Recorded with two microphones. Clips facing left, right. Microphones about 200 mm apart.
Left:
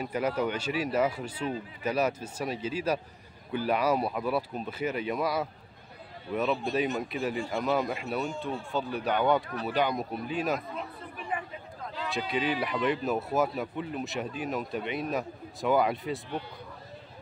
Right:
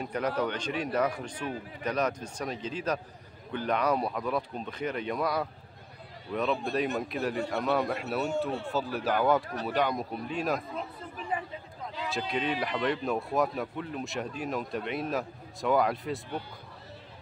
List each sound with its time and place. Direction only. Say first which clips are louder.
0.0 s speech: left 1 dB; 5° left (ahead or behind)
8.2 s speech: right 3 dB; 70° right (ahead or behind)
8.7 s speech: left 1 dB; centre (ahead or behind)
11.2 s a sound: right 1 dB; 25° right (ahead or behind)
12.0 s speech: left 1 dB; centre (ahead or behind)